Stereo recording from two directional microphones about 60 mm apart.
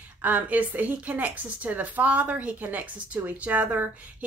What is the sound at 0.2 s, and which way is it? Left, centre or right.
A woman's voice, right.